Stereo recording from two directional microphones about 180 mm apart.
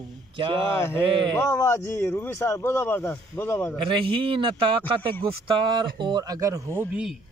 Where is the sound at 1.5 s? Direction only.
15° left (ahead or behind).